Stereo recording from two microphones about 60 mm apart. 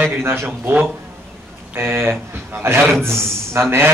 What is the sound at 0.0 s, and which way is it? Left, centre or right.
A man's voice, right.